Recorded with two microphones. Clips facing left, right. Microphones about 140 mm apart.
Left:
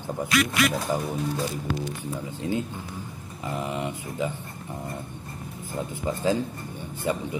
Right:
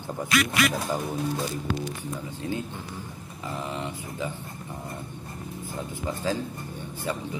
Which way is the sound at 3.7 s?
15° left (ahead or behind).